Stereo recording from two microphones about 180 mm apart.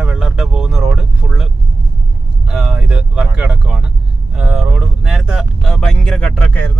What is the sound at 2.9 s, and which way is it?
Speech, 5° right (ahead or behind).